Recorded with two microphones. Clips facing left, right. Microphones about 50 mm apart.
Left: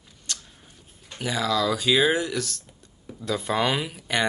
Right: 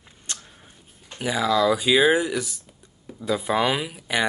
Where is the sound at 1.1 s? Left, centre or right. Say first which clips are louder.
Right 3 dB; centre.